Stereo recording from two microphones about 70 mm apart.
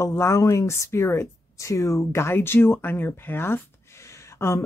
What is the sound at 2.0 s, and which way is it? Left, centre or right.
Speech, left.